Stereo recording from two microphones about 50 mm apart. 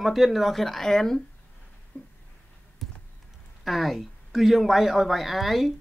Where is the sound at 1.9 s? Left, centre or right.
Left.